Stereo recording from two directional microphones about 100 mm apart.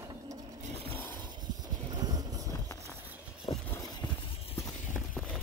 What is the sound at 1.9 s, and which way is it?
Vehicle, 40° right (ahead or behind).